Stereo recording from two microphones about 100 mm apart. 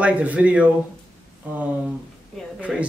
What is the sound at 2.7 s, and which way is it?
Speech, 5° right (ahead or behind).